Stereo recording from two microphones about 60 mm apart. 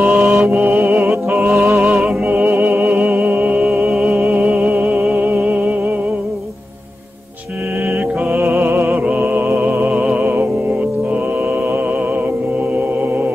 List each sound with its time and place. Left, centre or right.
0.1 s mantra: centre
0.7 s music: right
1.9 s music: centre
2.2 s music: right
8.3 s music: right
8.9 s music: centre